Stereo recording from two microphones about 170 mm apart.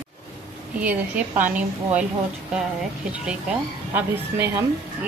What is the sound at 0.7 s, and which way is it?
Speech, 10° right (ahead or behind).